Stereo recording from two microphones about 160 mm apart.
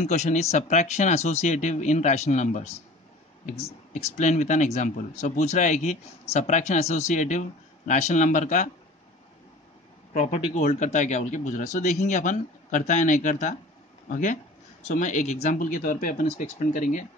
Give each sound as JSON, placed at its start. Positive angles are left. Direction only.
{"t": 0.0, "sound": "speech", "side_deg": 45}
{"t": 10.1, "sound": "speech", "side_deg": 45}